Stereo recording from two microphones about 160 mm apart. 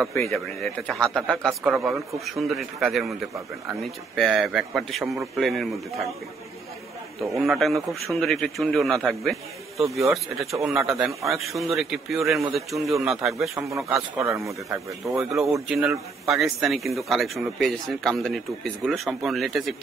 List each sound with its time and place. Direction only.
1.1 s a man's voice: 5° left (ahead or behind)
1.6 s a man's voice: 10° right (ahead or behind)
7.3 s a man's voice: centre (ahead or behind)
13.4 s a man's voice: 20° right (ahead or behind)
15.1 s a man's voice: centre (ahead or behind)